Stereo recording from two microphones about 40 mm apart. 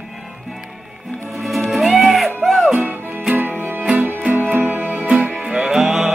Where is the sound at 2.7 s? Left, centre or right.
Right.